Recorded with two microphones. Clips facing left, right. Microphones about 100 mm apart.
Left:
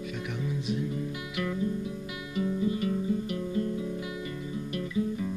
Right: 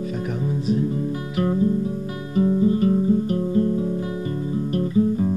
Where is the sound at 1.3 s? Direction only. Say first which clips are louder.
Right 10 dB; 35° right (ahead or behind).